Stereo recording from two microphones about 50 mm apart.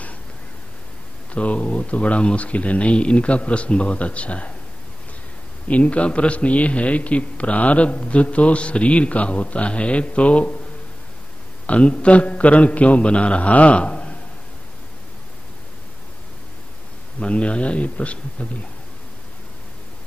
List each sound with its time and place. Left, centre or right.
1.3 s a man's voice: left
5.7 s a man's voice: left
11.6 s a man's voice: left
17.2 s a man's voice: left